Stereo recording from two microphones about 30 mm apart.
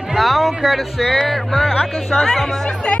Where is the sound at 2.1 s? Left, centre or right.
Centre.